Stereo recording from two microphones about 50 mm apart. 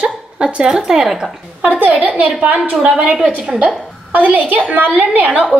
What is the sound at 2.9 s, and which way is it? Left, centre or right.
Speech, centre.